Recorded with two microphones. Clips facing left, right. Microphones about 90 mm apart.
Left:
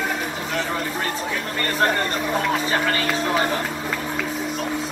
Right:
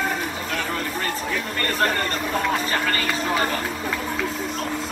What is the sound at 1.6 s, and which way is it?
Speech, 5° left (ahead or behind).